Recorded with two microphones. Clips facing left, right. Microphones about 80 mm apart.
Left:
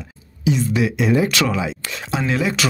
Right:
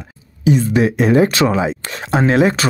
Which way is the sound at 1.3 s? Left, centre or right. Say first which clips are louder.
Right 5 dB; right.